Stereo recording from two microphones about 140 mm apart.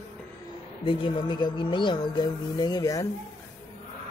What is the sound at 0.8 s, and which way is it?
Speech, 40° left (ahead or behind).